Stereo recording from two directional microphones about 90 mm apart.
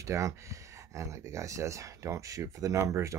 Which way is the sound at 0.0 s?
35° right (ahead or behind).